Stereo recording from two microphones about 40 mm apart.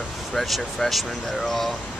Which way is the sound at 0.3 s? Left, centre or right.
Centre.